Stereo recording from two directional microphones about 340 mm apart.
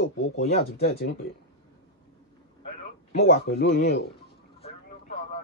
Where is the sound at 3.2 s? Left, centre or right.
Left.